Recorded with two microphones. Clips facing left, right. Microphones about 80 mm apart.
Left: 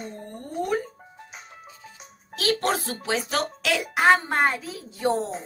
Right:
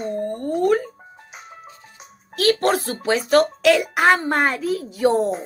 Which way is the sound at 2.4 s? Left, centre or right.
Right.